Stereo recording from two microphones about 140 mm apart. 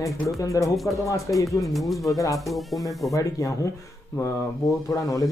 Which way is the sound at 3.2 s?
25° left (ahead or behind).